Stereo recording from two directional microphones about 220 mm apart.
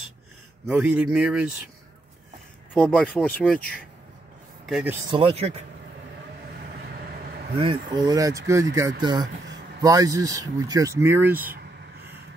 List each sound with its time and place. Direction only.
0.7 s speech: 5° right (ahead or behind)
2.7 s speech: 5° left (ahead or behind)
4.6 s speech: centre (ahead or behind)
5.1 s speech: 25° right (ahead or behind)
7.5 s speech: 25° right (ahead or behind)